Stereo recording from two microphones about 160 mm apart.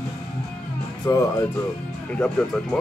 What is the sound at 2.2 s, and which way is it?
Speech, 5° left (ahead or behind).